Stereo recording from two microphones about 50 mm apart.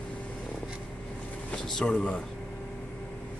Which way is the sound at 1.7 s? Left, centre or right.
Centre.